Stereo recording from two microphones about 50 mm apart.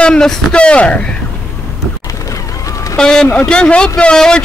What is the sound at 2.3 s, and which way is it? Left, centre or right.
Music, left.